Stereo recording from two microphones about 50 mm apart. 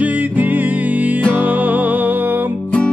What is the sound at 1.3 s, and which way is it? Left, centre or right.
Music, right.